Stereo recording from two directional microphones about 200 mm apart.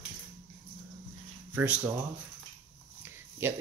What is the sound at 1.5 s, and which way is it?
Speech, 10° right (ahead or behind).